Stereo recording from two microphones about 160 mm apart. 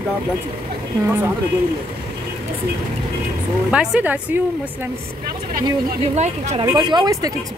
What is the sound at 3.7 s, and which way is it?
Speech, 5° right (ahead or behind).